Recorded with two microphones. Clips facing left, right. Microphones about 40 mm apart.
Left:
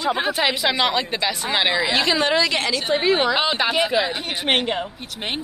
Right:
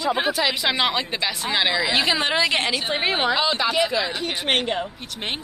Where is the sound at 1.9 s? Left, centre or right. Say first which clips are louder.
Left 2 dB; centre; by 3.0 s right.